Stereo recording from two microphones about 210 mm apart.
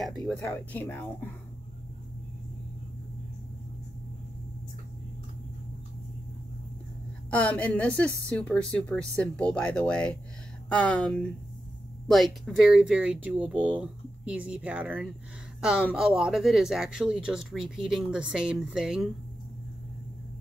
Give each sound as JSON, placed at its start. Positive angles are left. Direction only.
{"t": 0.0, "sound": "speech", "side_deg": 5}
{"t": 7.2, "sound": "speech", "side_deg": 5}